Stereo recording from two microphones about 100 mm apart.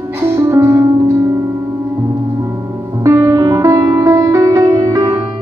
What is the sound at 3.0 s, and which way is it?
Music, 30° right (ahead or behind).